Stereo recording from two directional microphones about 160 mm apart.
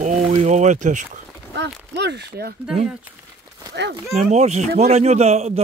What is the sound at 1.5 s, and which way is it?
Speech, 90° right.